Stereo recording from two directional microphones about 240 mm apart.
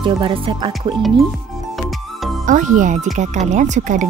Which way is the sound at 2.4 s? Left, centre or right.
Right.